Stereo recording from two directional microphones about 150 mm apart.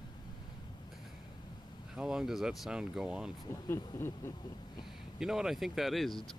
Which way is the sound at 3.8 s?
15° left (ahead or behind).